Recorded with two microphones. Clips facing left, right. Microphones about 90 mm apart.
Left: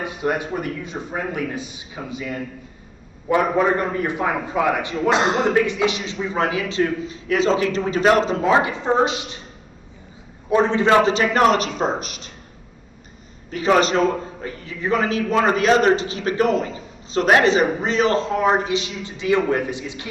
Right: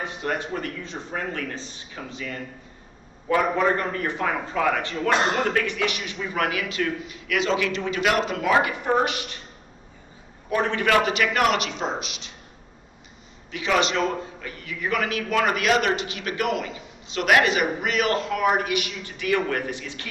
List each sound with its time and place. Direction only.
0.0 s a man's voice: 15° left (ahead or behind)
10.5 s a man's voice: 20° left (ahead or behind); by 12.3 s 45° left (ahead or behind)
13.5 s a man's voice: 40° left (ahead or behind); by 20.1 s 20° left (ahead or behind)